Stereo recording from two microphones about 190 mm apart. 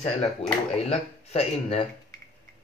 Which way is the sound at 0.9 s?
30° left (ahead or behind).